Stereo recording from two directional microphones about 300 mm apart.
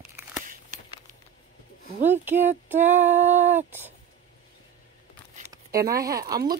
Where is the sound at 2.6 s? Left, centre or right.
Centre.